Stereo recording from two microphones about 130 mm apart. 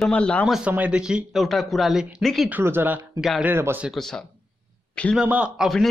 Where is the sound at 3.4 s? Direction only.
15° right (ahead or behind).